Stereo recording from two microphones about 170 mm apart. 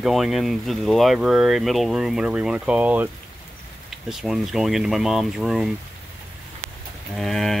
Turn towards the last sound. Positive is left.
turn(degrees=0)  # may be behind; listen again after turning